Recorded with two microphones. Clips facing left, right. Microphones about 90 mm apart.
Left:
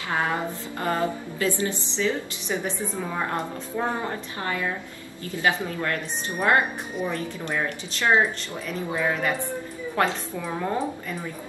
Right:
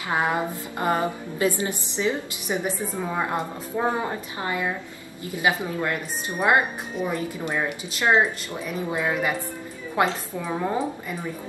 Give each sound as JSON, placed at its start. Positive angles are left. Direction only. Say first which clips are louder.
{"t": 0.1, "sound": "a woman's voice", "louder": "right 2 dB", "side_deg": -15}